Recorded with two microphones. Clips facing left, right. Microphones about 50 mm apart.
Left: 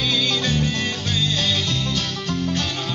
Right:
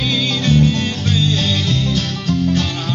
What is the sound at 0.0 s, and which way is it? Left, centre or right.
Music, centre.